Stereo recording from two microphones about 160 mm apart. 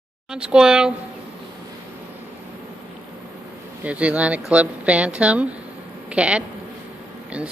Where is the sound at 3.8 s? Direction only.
10° right (ahead or behind).